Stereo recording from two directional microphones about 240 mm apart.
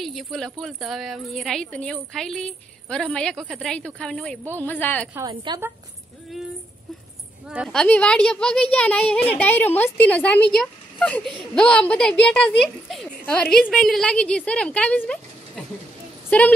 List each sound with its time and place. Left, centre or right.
0.0 s speech: centre
5.1 s a woman's voice: centre
7.4 s speech: centre